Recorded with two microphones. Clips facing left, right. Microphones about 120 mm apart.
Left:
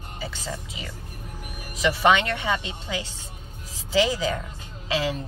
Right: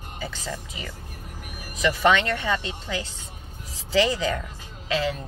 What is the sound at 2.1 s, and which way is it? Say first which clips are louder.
Speech: left 1 dB; 10° left (ahead or behind).